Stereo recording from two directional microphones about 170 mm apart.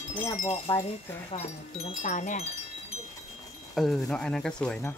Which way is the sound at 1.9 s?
45° left (ahead or behind).